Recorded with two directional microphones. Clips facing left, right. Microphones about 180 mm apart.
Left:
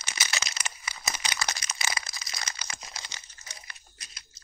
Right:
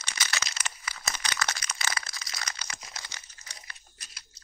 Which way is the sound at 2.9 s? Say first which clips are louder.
Left 1 dB; 20° left (ahead or behind).